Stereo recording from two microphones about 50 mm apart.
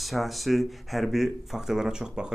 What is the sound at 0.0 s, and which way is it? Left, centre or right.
Speech, centre.